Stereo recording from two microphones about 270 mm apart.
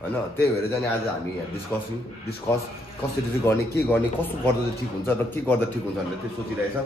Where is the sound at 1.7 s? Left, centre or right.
Centre.